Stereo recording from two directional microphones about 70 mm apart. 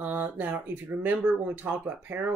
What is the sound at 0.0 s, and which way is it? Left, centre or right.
Speech, right.